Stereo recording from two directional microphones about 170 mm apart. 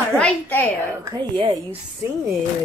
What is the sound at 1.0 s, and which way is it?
Speech, 25° right (ahead or behind).